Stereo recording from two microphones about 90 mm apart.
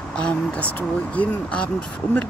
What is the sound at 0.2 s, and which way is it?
Speech, 15° left (ahead or behind).